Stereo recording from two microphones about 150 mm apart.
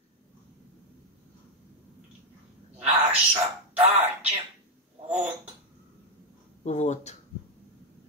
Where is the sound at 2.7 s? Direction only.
10° right (ahead or behind).